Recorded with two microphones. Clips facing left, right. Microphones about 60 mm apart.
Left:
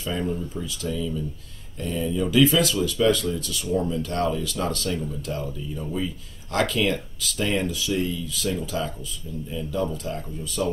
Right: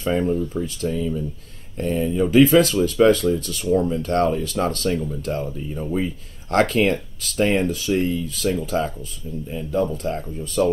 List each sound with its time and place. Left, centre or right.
0.0 s speech: right